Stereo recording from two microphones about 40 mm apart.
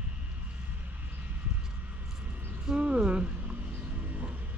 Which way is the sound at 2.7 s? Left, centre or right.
Right.